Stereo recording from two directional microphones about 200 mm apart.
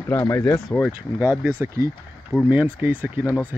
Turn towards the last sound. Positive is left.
turn(degrees=-10)  # may be behind; listen again after turning